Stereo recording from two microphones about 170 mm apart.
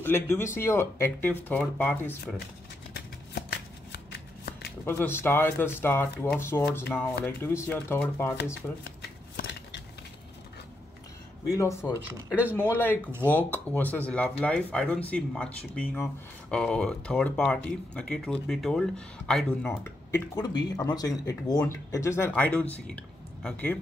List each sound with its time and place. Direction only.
0.0 s speech: 15° left (ahead or behind)
2.9 s shuffling cards: 75° left (ahead or behind)
4.8 s speech: 10° left (ahead or behind)
9.4 s scissors: 90° left
11.5 s speech: 15° left (ahead or behind)
19.8 s speech: 15° left (ahead or behind)